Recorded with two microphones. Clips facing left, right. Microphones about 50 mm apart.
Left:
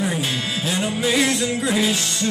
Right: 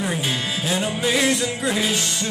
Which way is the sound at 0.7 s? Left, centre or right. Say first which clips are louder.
Left 1 dB; centre.